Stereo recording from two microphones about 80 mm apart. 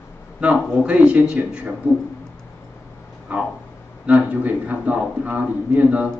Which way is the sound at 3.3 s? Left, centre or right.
Right.